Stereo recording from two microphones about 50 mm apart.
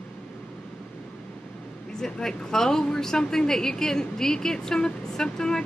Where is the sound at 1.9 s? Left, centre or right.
Centre.